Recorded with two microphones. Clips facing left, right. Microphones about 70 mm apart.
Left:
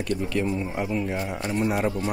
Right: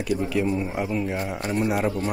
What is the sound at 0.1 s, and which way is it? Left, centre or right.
Speech, centre.